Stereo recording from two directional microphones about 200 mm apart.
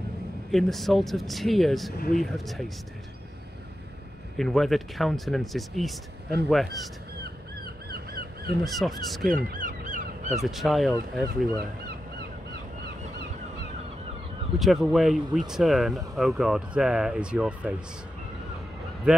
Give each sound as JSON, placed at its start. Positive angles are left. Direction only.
{"t": 0.5, "sound": "speech", "side_deg": 0}
{"t": 2.0, "sound": "speech", "side_deg": 45}
{"t": 2.3, "sound": "speech", "side_deg": 0}
{"t": 4.4, "sound": "speech", "side_deg": 0}
{"t": 7.2, "sound": "crow", "side_deg": -50}
{"t": 8.6, "sound": "speech", "side_deg": 0}
{"t": 9.3, "sound": "crow", "side_deg": -45}
{"t": 10.3, "sound": "speech", "side_deg": 0}
{"t": 14.6, "sound": "speech", "side_deg": 0}
{"t": 19.1, "sound": "speech", "side_deg": -5}